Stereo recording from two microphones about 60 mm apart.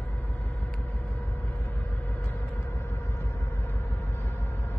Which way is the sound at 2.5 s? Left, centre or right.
Left.